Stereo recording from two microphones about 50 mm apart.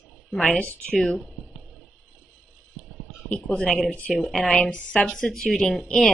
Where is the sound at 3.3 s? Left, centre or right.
Centre.